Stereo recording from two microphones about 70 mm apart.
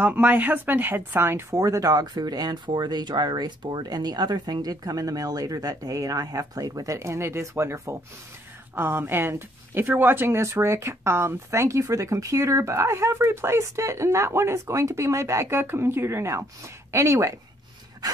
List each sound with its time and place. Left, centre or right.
0.0 s speech: right
1.6 s speech: right
8.7 s speech: right